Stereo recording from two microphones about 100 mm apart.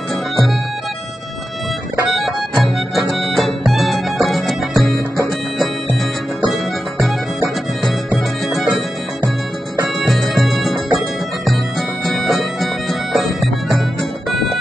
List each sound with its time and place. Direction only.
2.1 s music: centre (ahead or behind)
9.9 s music: centre (ahead or behind)
12.0 s bagpipes: centre (ahead or behind)
13.1 s music: centre (ahead or behind)